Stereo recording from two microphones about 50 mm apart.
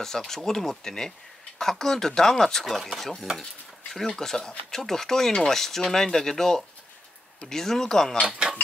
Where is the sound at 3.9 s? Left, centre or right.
Centre.